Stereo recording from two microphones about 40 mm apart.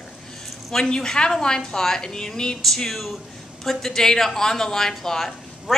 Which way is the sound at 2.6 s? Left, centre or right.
Centre.